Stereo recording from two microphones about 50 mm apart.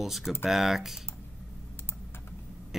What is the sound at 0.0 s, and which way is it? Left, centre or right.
Speech, centre.